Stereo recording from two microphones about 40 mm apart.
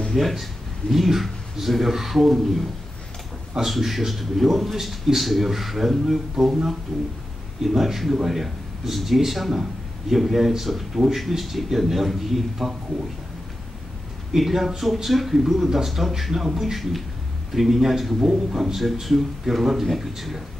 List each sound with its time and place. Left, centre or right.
0.1 s a man's voice: centre
14.3 s a man's voice: centre
18.8 s a man's voice: centre